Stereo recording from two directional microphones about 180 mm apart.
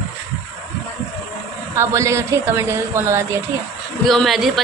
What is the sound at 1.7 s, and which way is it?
A woman's voice, 15° right (ahead or behind).